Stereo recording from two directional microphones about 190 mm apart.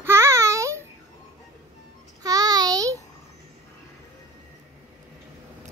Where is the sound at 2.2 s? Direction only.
20° right (ahead or behind).